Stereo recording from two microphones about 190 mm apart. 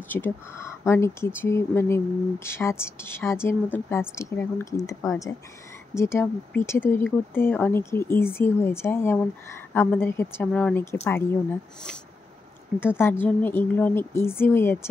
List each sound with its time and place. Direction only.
0.1 s speech: 10° left (ahead or behind)
12.8 s speech: 10° left (ahead or behind)